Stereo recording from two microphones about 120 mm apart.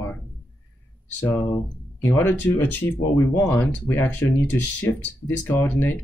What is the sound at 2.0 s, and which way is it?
Speech, 25° left (ahead or behind).